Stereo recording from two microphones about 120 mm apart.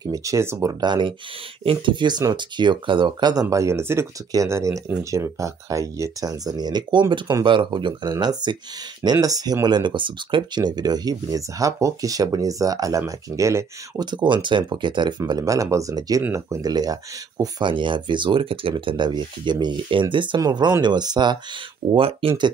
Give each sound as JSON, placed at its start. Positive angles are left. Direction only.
{"t": 0.0, "sound": "speech", "side_deg": -30}
{"t": 14.1, "sound": "speech", "side_deg": -40}
{"t": 21.9, "sound": "speech", "side_deg": -50}